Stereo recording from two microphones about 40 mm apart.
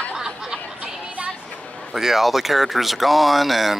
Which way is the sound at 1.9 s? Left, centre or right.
Centre.